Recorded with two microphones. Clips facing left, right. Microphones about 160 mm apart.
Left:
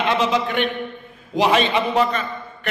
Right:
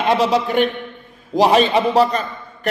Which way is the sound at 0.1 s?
40° right (ahead or behind).